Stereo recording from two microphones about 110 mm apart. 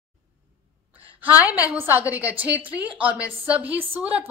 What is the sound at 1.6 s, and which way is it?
A woman's voice, 15° right (ahead or behind).